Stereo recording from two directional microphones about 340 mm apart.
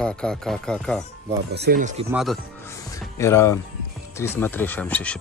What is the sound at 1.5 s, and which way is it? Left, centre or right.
Speech, right.